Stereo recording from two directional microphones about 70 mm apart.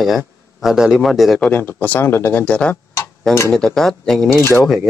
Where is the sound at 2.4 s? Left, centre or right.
Centre.